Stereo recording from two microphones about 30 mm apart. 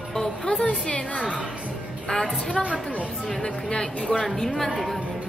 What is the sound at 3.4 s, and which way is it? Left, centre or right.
Speech, left.